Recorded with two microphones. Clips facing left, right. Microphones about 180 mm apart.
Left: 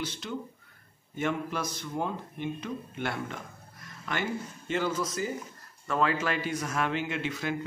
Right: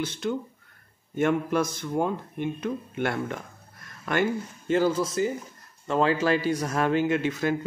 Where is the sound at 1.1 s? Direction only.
50° right (ahead or behind).